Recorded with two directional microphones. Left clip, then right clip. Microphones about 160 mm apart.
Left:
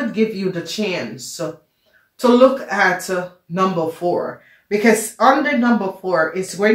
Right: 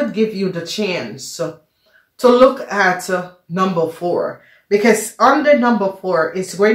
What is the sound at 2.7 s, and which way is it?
Speech, 35° right (ahead or behind).